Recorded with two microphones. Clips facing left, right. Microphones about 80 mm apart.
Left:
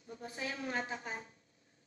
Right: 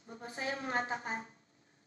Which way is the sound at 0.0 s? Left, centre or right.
Right.